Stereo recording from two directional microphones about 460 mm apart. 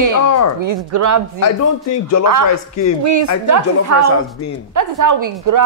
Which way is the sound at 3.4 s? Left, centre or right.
Right.